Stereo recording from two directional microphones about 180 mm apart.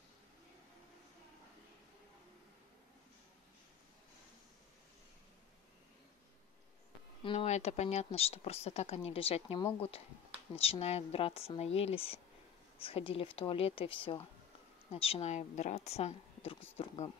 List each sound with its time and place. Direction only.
7.2 s speech: 40° left (ahead or behind)